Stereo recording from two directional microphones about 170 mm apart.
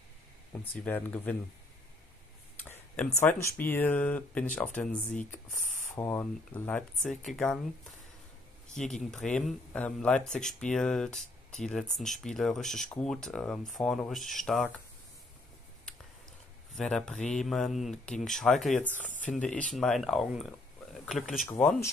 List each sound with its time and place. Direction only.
0.8 s speech: 10° left (ahead or behind)
2.7 s speech: 10° left (ahead or behind)
5.5 s a sound: 50° left (ahead or behind)
5.9 s speech: 10° left (ahead or behind)
8.7 s speech: 5° left (ahead or behind)
16.7 s speech: centre (ahead or behind)
18.9 s speech: 50° left (ahead or behind)
19.3 s speech: 5° left (ahead or behind)